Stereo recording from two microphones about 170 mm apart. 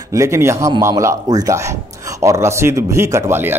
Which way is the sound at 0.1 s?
15° right (ahead or behind).